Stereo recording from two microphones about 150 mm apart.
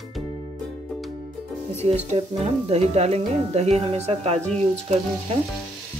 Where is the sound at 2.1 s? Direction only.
45° right (ahead or behind).